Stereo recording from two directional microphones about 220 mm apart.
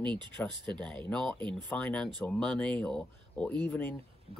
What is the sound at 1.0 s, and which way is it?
Speech, 5° left (ahead or behind).